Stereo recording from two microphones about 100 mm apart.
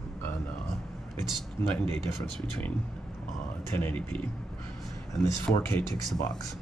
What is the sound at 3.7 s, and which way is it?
Speech, 20° left (ahead or behind).